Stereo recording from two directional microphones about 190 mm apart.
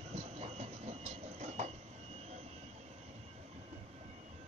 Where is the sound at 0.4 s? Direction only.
35° right (ahead or behind).